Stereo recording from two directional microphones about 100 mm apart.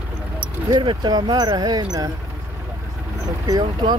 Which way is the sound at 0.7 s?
50° right (ahead or behind).